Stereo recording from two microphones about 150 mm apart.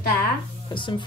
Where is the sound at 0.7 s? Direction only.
30° left (ahead or behind).